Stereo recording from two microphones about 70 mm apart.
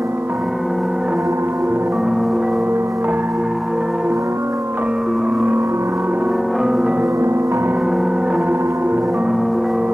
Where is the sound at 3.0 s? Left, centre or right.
Right.